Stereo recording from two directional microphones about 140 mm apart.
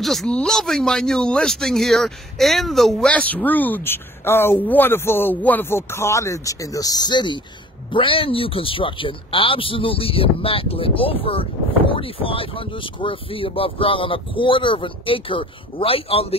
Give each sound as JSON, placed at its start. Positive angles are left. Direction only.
{"t": 0.0, "sound": "a man's voice", "side_deg": 0}